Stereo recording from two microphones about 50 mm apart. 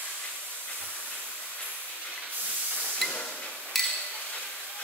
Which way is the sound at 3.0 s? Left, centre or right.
Centre.